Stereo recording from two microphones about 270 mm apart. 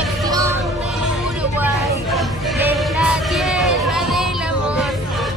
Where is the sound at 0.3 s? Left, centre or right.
Centre.